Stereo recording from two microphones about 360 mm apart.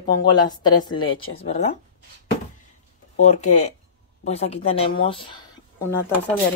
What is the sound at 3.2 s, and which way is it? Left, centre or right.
Speech, centre.